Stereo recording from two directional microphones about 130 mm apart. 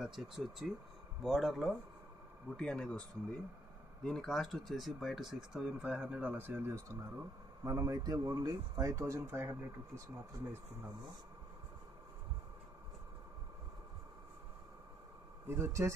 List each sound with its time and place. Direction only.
0.0 s speech: centre (ahead or behind)
4.0 s speech: 5° left (ahead or behind); by 10.0 s 20° right (ahead or behind)
15.4 s speech: 20° right (ahead or behind)